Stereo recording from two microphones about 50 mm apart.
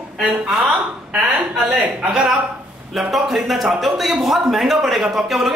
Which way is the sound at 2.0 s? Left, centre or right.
Right.